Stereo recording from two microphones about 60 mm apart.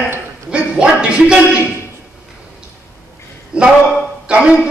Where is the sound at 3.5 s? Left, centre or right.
Centre.